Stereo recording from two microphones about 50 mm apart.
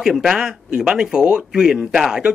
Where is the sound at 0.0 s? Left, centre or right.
Centre.